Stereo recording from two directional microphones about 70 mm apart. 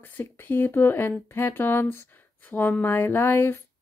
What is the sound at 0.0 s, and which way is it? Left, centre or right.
Speech, left.